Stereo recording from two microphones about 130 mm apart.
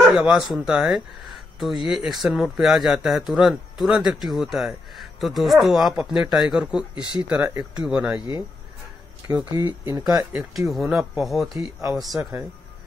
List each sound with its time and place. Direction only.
0.1 s speech: 5° right (ahead or behind)
9.5 s speech: 30° right (ahead or behind)
10.0 s speech: 5° right (ahead or behind)
12.2 s speech: 20° right (ahead or behind)